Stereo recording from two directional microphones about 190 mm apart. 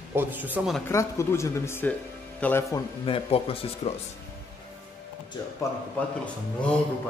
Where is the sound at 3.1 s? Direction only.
30° left (ahead or behind).